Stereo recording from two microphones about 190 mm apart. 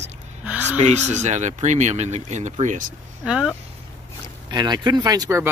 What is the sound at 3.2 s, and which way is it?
Speech, 5° right (ahead or behind).